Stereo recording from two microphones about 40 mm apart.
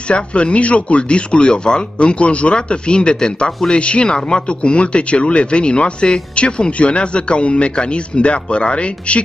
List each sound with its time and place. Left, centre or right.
0.1 s speech: left